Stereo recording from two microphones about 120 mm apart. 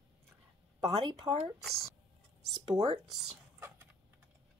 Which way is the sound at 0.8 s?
55° right (ahead or behind).